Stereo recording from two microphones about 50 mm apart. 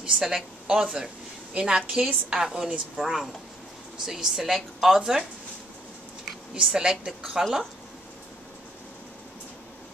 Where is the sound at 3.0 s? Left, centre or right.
Centre.